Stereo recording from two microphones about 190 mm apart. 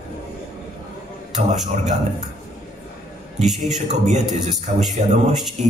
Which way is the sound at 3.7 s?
40° right (ahead or behind).